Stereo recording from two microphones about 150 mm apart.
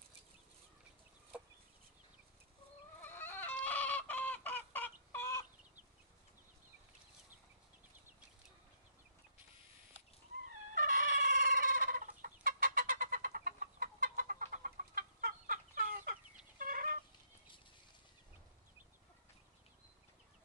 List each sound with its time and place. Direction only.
3.0 s chicken: 15° left (ahead or behind)
10.7 s chicken: 70° right (ahead or behind)